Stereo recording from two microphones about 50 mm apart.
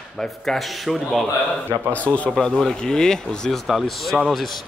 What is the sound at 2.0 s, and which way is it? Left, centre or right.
Speech, left.